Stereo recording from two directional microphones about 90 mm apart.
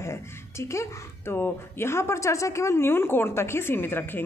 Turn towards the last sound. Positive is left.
turn(degrees=25)  # may be behind; listen again after turning